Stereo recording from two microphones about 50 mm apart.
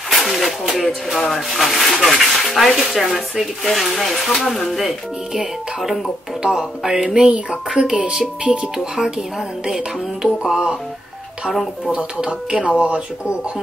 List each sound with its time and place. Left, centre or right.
0.1 s speech: centre
4.7 s speech: centre
9.9 s speech: centre
11.4 s speech: centre
11.8 s speech: right